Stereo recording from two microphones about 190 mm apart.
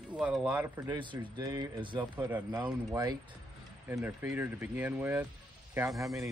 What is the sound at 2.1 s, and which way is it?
Speech, 10° right (ahead or behind).